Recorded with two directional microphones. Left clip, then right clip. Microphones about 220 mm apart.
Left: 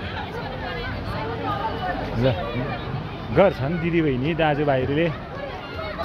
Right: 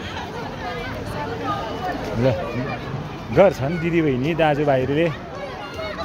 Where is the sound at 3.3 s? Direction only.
15° right (ahead or behind).